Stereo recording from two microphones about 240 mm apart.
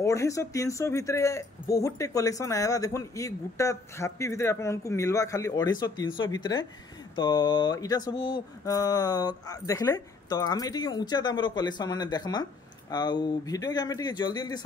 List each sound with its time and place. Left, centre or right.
0.0 s speech: centre